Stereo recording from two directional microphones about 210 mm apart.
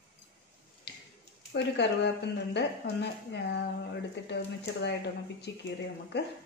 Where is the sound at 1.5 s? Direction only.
55° left (ahead or behind).